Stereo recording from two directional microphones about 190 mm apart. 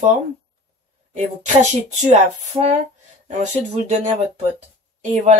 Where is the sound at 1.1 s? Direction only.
40° right (ahead or behind).